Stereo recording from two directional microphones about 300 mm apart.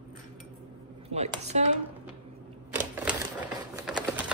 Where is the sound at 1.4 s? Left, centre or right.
Right.